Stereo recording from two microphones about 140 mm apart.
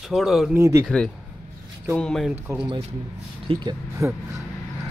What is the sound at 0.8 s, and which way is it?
Speech, centre (ahead or behind).